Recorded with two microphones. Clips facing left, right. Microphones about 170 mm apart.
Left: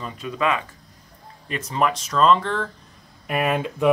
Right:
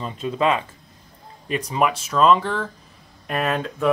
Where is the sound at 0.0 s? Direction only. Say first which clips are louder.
Right 3 dB; 25° right (ahead or behind).